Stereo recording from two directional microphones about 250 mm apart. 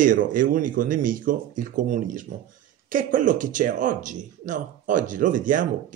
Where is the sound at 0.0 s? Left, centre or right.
Right.